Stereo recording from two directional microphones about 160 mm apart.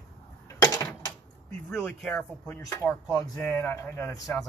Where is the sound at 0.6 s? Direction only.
20° left (ahead or behind).